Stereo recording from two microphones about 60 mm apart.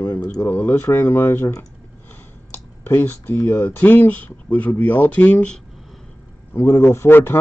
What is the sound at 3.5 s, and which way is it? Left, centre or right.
Speech, left.